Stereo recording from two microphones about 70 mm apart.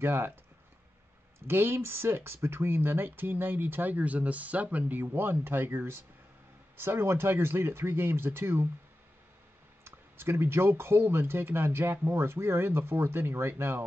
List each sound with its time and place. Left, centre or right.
0.0 s speech: right
1.5 s speech: right
9.8 s speech: right